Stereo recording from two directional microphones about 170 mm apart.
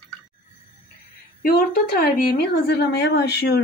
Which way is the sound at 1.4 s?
65° left (ahead or behind).